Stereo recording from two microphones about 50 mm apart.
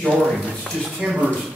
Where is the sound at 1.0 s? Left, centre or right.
Centre.